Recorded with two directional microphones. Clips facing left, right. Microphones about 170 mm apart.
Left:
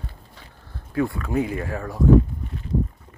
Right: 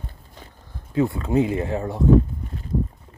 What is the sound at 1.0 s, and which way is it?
Speech, 25° right (ahead or behind).